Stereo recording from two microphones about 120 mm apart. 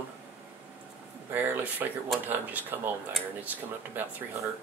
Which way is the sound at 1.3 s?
15° right (ahead or behind).